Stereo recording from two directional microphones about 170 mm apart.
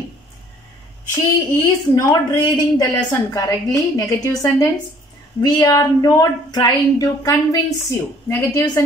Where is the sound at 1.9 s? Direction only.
20° left (ahead or behind).